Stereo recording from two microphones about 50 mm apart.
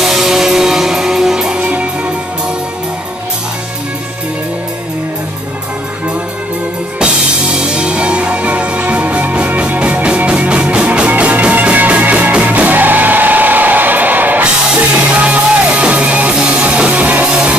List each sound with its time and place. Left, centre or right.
0.0 s music: centre; by 1.9 s right
7.5 s music: centre; by 14.4 s right
15.0 s music: right
17.3 s music: centre